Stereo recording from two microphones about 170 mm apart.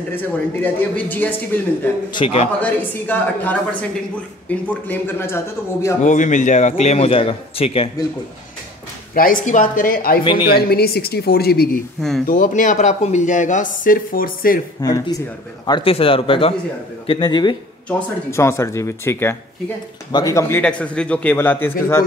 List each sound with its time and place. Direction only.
0.1 s a man's voice: 10° left (ahead or behind)
2.1 s a man's voice: 35° left (ahead or behind)
2.6 s a man's voice: 10° left (ahead or behind)
6.0 s a man's voice: 45° left (ahead or behind)
9.1 s speech: 55° left (ahead or behind)
12.3 s speech: 50° left (ahead or behind)
14.8 s a man's voice: 20° left (ahead or behind)
17.8 s a man's voice: 10° left (ahead or behind)